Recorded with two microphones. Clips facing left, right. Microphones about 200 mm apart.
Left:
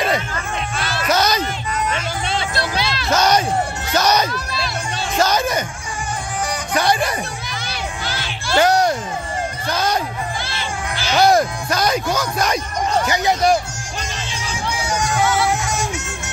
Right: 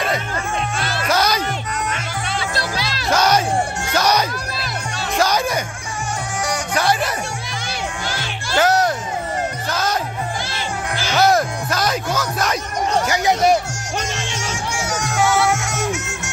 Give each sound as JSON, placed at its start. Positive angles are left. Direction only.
{"t": 0.7, "sound": "music", "side_deg": -50}
{"t": 1.0, "sound": "music", "side_deg": -10}
{"t": 2.5, "sound": "music", "side_deg": -40}
{"t": 3.1, "sound": "music", "side_deg": -10}
{"t": 3.9, "sound": "a sound", "side_deg": -10}
{"t": 5.2, "sound": "music", "side_deg": -10}
{"t": 6.7, "sound": "speech", "side_deg": -5}
{"t": 8.5, "sound": "music", "side_deg": -5}
{"t": 11.1, "sound": "music", "side_deg": 0}
{"t": 13.1, "sound": "speech", "side_deg": -10}
{"t": 13.9, "sound": "music", "side_deg": -70}